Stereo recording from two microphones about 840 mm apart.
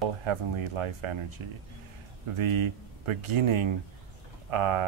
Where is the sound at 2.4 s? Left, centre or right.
Right.